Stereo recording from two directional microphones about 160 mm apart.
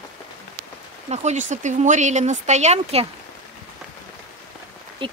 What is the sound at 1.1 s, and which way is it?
Speech, 45° right (ahead or behind).